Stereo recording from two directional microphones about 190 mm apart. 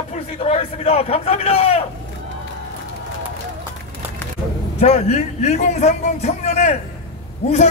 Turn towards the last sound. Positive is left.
turn(degrees=35)  # may be behind; listen again after turning